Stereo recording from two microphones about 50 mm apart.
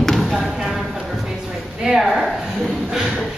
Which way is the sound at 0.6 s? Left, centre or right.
Centre.